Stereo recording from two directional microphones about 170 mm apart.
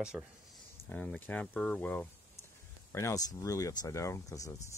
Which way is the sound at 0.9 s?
10° left (ahead or behind).